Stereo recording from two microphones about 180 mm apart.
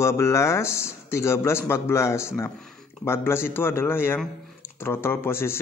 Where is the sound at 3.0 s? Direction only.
15° left (ahead or behind).